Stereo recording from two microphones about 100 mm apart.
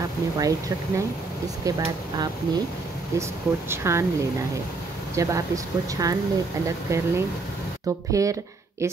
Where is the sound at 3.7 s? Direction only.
25° right (ahead or behind).